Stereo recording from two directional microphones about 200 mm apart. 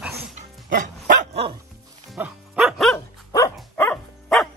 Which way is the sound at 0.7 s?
40° right (ahead or behind).